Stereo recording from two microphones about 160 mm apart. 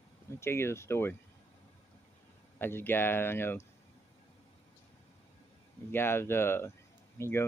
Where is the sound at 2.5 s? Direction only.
15° left (ahead or behind).